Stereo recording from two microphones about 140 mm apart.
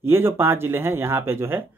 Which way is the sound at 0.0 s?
15° right (ahead or behind).